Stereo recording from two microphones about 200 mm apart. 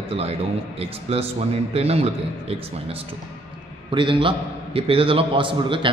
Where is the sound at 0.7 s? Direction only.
30° right (ahead or behind).